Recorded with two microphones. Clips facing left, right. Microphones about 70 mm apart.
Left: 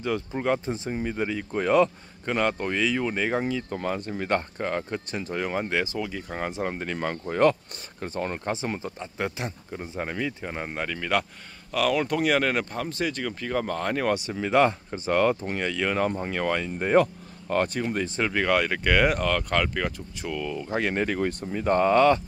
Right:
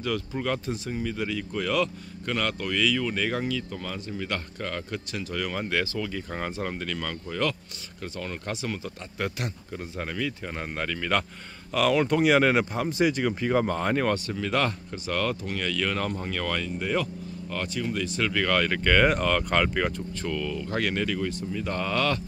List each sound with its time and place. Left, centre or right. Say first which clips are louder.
0.0 s speech: left 2 dB; left
3.7 s speech: left 5 dB; left; by 14.1 s centre
14.1 s speech: left 4 dB; centre
16.7 s speech: left 7 dB; left; by 19.9 s centre
20.2 s speech: left 2 dB; centre